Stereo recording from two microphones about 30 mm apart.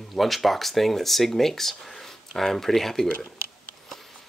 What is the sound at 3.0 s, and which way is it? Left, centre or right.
Speech, left.